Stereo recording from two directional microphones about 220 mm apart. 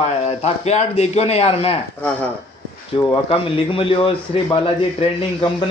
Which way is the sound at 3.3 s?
25° left (ahead or behind).